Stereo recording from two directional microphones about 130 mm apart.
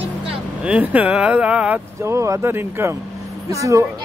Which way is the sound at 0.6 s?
10° right (ahead or behind).